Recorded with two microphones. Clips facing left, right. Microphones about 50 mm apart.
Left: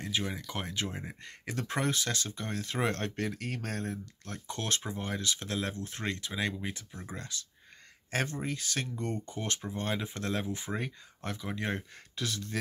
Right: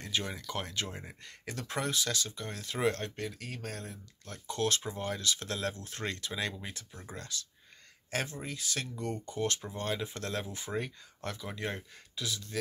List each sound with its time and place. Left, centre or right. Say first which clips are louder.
0.0 s speech: left 1 dB; centre
8.1 s speech: left 3 dB; left